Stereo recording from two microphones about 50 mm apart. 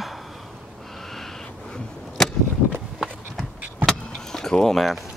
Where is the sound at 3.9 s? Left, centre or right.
Centre.